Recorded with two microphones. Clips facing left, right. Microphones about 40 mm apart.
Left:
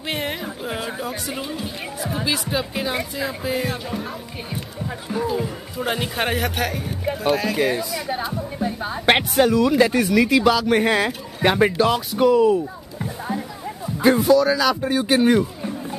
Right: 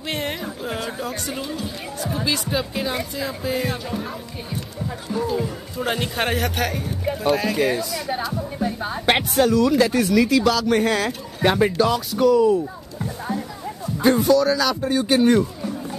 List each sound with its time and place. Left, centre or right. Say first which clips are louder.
0.1 s speech: even; centre
5.1 s speech: even; centre
9.4 s speech: right 1 dB; centre
13.0 s music: even; centre
13.9 s speech: left 1 dB; centre